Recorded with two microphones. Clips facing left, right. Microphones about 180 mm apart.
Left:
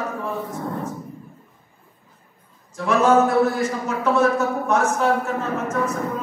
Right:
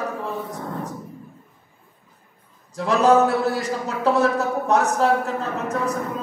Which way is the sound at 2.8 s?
35° right (ahead or behind).